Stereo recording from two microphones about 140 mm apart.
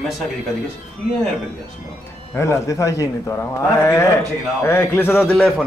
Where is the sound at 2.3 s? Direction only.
20° left (ahead or behind).